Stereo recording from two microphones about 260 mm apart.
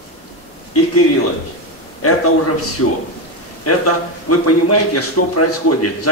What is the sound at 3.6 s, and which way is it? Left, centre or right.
A man's voice, left.